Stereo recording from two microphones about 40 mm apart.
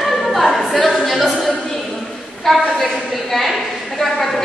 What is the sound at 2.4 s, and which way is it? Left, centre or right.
Speech, centre.